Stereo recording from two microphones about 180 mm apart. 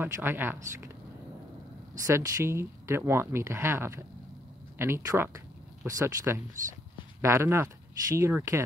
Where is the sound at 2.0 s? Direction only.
15° right (ahead or behind).